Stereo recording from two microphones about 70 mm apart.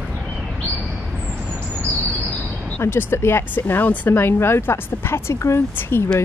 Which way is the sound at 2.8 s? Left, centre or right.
Left.